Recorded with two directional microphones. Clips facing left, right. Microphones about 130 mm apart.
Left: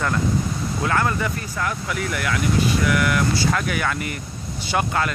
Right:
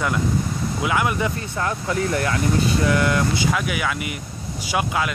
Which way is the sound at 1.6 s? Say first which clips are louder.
Right 3 dB; 30° right (ahead or behind).